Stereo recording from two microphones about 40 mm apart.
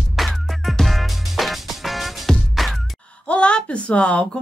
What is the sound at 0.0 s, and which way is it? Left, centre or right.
Music, centre.